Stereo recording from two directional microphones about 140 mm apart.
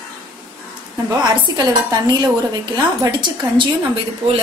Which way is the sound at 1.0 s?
30° right (ahead or behind).